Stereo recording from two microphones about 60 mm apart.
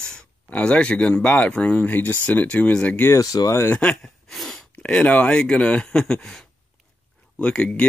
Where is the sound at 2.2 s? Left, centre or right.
Centre.